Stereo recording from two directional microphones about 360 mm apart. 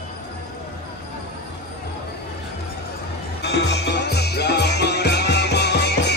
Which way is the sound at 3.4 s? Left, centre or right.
Left.